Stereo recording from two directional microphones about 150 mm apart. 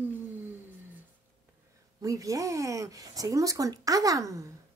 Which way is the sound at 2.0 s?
20° right (ahead or behind).